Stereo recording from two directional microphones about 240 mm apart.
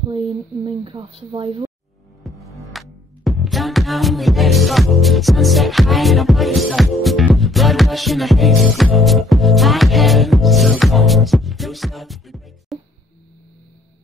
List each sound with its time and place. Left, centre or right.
0.7 s speech: right
2.4 s music: centre